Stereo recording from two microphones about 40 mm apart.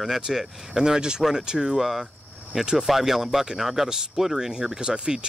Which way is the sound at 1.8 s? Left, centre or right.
Centre.